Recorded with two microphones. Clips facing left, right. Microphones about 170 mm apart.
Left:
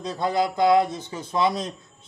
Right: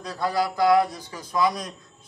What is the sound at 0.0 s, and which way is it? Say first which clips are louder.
A man's voice: left 2 dB; 20° left (ahead or behind).